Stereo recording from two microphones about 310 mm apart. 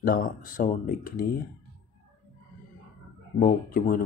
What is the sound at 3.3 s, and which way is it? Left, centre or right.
Speech, left.